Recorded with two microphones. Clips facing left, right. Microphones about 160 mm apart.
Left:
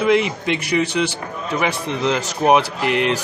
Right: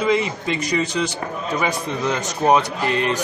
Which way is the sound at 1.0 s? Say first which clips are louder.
Left 2 dB; 10° left (ahead or behind).